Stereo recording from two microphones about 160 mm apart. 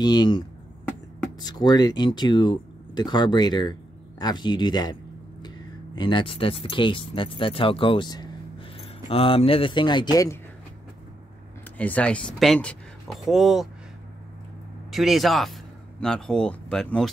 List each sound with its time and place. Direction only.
0.0 s speech: 25° left (ahead or behind)
1.4 s speech: 25° left (ahead or behind)
5.9 s speech: 30° left (ahead or behind)
11.8 s speech: 10° left (ahead or behind)
14.9 s speech: centre (ahead or behind)